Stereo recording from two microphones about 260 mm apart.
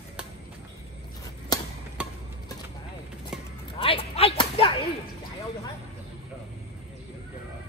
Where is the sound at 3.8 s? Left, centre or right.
Left.